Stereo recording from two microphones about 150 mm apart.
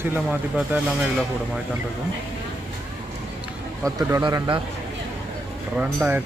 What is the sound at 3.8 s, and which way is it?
Speech, 25° right (ahead or behind).